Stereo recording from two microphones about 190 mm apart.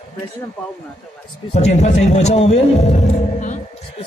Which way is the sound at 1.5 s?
35° left (ahead or behind).